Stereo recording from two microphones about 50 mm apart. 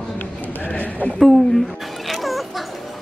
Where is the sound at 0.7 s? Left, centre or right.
Left.